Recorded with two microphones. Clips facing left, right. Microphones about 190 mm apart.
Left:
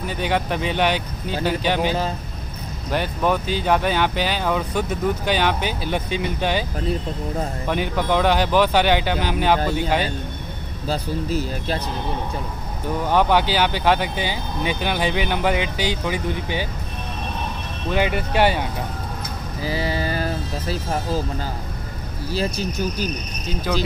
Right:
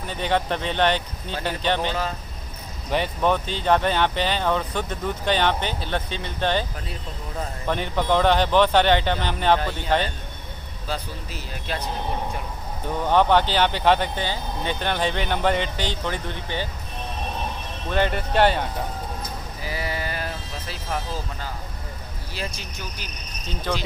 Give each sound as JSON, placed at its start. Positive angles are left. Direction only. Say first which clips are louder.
{"t": 0.0, "sound": "speech", "louder": "left 1 dB", "side_deg": 5}
{"t": 7.6, "sound": "speech", "louder": "even", "side_deg": 5}
{"t": 10.9, "sound": "speech", "louder": "left 8 dB", "side_deg": 40}
{"t": 13.0, "sound": "speech", "louder": "even", "side_deg": 5}
{"t": 17.9, "sound": "speech", "louder": "left 1 dB", "side_deg": 5}
{"t": 19.6, "sound": "a sound", "louder": "left 6 dB", "side_deg": 30}
{"t": 22.3, "sound": "speech", "louder": "left 10 dB", "side_deg": 35}